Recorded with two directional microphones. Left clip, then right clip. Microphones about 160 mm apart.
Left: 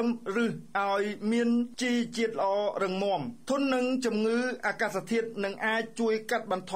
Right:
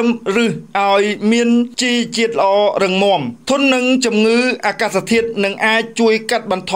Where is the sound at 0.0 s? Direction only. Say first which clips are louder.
Right 14 dB; 20° right (ahead or behind).